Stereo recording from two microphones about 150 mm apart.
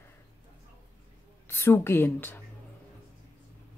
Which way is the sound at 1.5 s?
15° left (ahead or behind).